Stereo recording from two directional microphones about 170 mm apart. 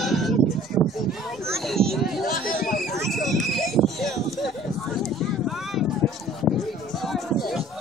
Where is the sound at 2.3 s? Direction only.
55° left (ahead or behind).